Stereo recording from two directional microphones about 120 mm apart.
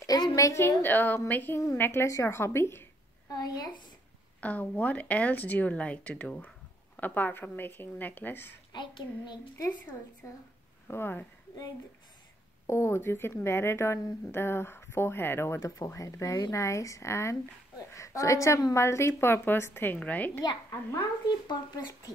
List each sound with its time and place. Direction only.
0.0 s speech: 30° left (ahead or behind)
3.3 s child singing: 35° left (ahead or behind)
4.4 s speech: 15° left (ahead or behind)
8.7 s child singing: 40° left (ahead or behind)
10.9 s speech: 20° left (ahead or behind)
12.6 s speech: 20° left (ahead or behind)
21.5 s child singing: 35° left (ahead or behind)